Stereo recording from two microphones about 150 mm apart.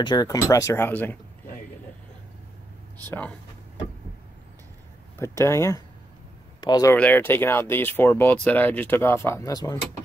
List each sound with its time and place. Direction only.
0.0 s speech: 25° left (ahead or behind)
3.0 s speech: 10° left (ahead or behind)
5.2 s speech: 20° left (ahead or behind)
6.9 s speech: 10° left (ahead or behind)